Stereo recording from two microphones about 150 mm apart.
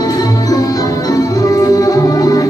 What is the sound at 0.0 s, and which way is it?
Music, 25° left (ahead or behind).